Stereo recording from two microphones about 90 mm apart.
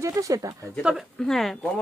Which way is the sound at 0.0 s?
35° right (ahead or behind).